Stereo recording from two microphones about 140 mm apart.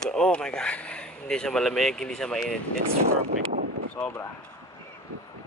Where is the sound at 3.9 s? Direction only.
10° left (ahead or behind).